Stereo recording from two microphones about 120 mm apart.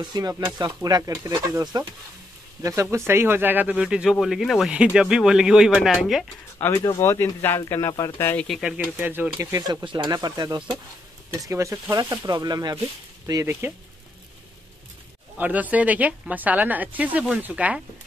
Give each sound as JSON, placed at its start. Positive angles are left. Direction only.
{"t": 0.0, "sound": "speech", "side_deg": -30}
{"t": 6.6, "sound": "speech", "side_deg": 20}
{"t": 8.5, "sound": "speech", "side_deg": 0}
{"t": 8.7, "sound": "speech", "side_deg": -15}
{"t": 9.4, "sound": "speech", "side_deg": -30}
{"t": 13.5, "sound": "speech", "side_deg": -15}
{"t": 15.3, "sound": "speech", "side_deg": -15}